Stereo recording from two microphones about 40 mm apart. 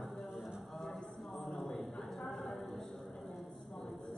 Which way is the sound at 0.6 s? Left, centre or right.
Centre.